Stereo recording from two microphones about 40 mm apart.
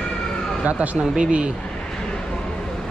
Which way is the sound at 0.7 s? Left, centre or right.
Right.